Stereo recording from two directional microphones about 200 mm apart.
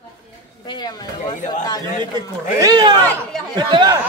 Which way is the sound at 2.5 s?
20° right (ahead or behind).